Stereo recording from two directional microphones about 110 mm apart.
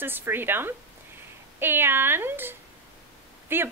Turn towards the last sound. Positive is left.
turn(degrees=-20)  # may be behind; listen again after turning